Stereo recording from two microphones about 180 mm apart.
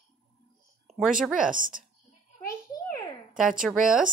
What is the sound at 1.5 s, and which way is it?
Speech, 50° right (ahead or behind).